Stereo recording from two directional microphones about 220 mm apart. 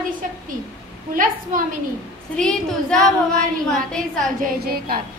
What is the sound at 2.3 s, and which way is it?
Speech, 5° left (ahead or behind).